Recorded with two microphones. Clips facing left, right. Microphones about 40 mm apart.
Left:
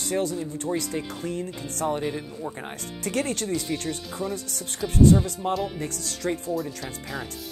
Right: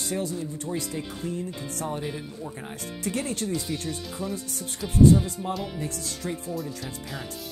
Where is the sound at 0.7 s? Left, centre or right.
Left.